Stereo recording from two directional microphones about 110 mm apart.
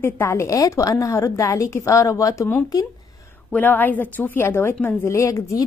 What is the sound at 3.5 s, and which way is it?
A woman's voice, 15° left (ahead or behind).